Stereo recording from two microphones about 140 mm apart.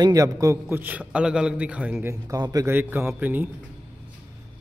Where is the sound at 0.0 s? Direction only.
25° right (ahead or behind).